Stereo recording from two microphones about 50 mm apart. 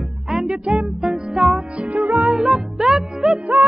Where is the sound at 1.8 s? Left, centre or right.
Right.